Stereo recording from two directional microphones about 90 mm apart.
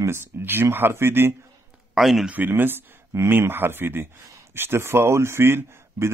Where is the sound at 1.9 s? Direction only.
5° right (ahead or behind).